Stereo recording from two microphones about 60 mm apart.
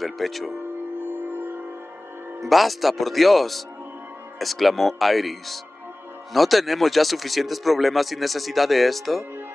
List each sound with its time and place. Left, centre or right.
0.0 s speech: centre
2.4 s speech: centre